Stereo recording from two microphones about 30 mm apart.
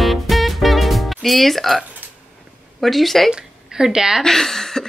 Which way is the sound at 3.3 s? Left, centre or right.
Right.